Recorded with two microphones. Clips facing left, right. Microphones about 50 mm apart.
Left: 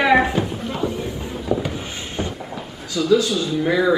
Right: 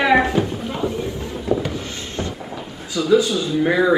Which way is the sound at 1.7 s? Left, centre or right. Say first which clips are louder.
Even; centre.